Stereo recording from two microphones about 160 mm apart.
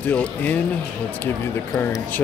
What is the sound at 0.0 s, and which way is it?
Speech, 10° left (ahead or behind).